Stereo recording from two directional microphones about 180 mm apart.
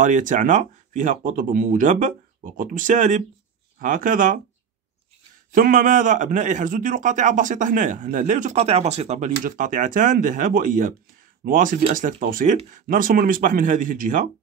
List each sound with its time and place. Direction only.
0.0 s a man's voice: 45° right (ahead or behind)
5.5 s a man's voice: 50° right (ahead or behind)